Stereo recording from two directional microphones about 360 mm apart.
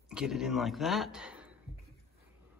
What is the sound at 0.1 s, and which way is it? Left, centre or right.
A man's voice, centre.